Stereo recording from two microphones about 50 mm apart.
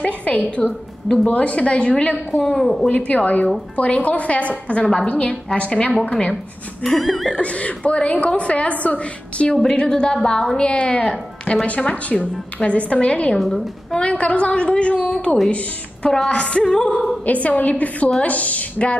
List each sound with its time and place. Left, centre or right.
0.0 s a woman's voice: left
2.4 s a woman's voice: centre
3.1 s a woman's voice: left
7.0 s a sound: centre
7.3 s a woman's voice: left
9.6 s a woman's voice: centre
13.4 s a sound: centre
13.9 s a woman's voice: left
15.0 s a woman's voice: centre
16.3 s a woman's voice: left
17.3 s a woman's voice: left